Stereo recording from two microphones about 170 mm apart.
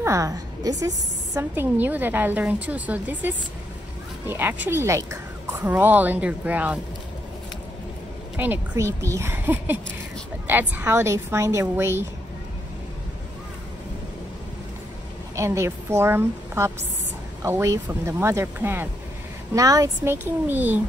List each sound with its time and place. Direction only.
0.0 s a woman's voice: 20° right (ahead or behind)
8.4 s a woman's voice: 15° right (ahead or behind)
15.3 s a woman's voice: 15° right (ahead or behind)